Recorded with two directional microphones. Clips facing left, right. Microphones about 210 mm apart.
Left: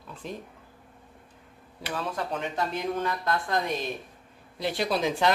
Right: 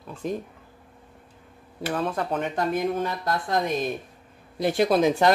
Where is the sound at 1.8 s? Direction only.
45° right (ahead or behind).